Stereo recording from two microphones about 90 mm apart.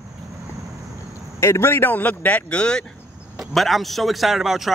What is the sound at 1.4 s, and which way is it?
A man's voice, 30° left (ahead or behind).